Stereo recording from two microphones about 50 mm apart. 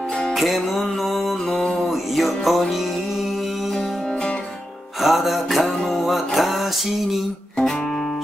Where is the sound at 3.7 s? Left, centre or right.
Centre.